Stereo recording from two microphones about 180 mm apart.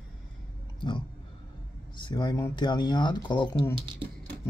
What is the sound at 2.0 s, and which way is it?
Speech, 25° left (ahead or behind).